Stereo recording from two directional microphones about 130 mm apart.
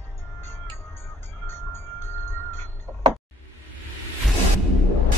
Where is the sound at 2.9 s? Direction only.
30° right (ahead or behind).